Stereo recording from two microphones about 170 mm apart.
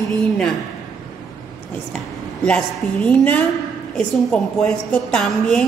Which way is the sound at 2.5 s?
5° left (ahead or behind).